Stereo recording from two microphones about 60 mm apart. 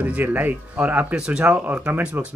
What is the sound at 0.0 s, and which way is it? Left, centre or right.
Speech, right.